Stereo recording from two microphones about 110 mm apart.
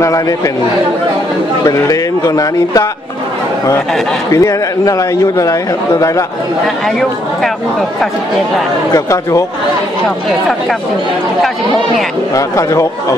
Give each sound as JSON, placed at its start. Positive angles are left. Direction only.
{"t": 0.0, "sound": "speech", "side_deg": 30}
{"t": 1.6, "sound": "speech", "side_deg": 35}
{"t": 4.3, "sound": "a man's voice", "side_deg": 30}
{"t": 8.9, "sound": "a man's voice", "side_deg": 30}
{"t": 12.4, "sound": "a man's voice", "side_deg": 30}